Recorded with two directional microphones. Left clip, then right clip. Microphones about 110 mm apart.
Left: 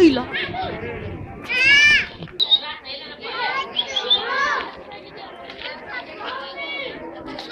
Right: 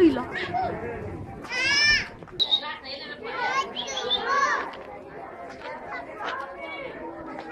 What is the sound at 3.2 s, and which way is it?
Children playing, 40° right (ahead or behind).